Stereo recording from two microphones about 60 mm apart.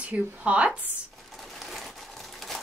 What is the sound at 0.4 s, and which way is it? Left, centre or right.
Speech, centre.